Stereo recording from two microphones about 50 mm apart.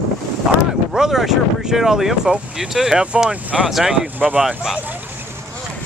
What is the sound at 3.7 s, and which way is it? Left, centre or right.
Speech, centre.